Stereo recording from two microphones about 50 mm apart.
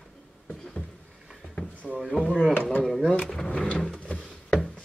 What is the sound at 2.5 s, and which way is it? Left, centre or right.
Speech, left.